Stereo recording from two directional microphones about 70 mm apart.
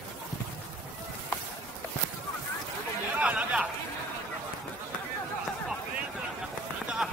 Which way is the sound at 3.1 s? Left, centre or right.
Centre.